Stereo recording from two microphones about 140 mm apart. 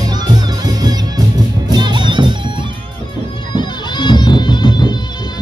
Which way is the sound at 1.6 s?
30° right (ahead or behind).